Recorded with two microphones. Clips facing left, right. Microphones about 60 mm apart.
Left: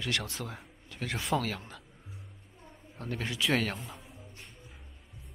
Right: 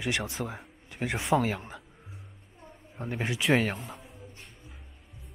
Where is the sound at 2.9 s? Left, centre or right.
Centre.